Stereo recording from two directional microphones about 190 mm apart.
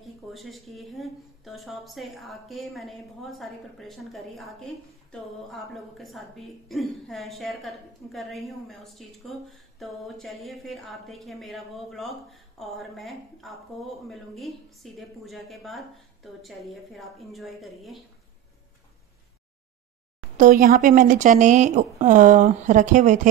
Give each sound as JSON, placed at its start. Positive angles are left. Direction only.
{"t": 0.0, "sound": "speech", "side_deg": 0}
{"t": 20.3, "sound": "speech", "side_deg": -45}